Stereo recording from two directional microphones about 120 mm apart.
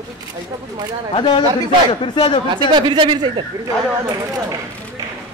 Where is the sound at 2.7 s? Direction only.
40° right (ahead or behind).